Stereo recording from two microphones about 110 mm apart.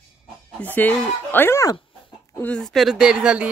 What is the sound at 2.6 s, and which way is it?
Speech, centre (ahead or behind).